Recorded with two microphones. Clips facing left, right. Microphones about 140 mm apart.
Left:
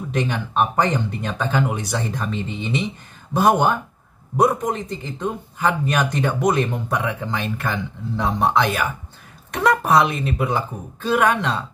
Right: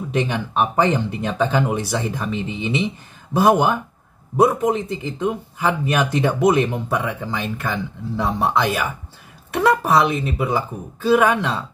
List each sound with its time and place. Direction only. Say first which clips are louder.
0.3 s speech: even; 10° right (ahead or behind)